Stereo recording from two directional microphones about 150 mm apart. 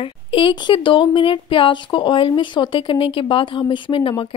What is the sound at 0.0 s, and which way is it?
Speech, 35° left (ahead or behind).